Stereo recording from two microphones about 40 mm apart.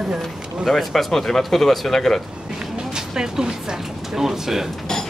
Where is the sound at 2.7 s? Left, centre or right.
Centre.